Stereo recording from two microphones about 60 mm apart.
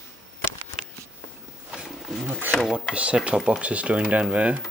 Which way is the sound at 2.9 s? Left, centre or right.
Right.